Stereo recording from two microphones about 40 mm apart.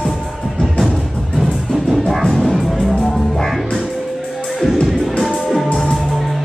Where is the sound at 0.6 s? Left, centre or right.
Centre.